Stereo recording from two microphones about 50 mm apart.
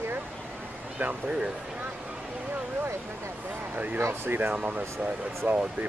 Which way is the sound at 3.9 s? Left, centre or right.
Right.